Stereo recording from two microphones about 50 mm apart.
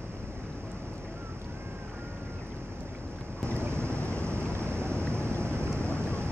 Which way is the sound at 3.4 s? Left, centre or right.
Right.